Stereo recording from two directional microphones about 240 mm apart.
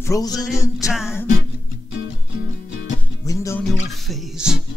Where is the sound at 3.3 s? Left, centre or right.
Centre.